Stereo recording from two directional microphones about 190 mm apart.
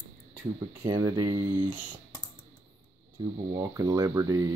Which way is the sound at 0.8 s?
20° right (ahead or behind).